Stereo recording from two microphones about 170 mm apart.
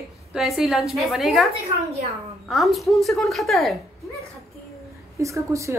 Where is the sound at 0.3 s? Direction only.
Centre (ahead or behind).